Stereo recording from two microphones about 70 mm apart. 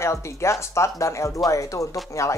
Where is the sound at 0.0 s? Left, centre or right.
Left.